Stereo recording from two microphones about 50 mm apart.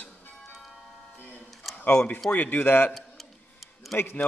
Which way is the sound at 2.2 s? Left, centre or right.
Left.